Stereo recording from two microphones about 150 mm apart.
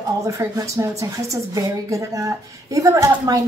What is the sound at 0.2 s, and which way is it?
A woman's voice, 20° right (ahead or behind).